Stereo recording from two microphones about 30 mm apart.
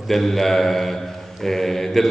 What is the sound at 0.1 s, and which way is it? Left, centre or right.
A man's voice, centre.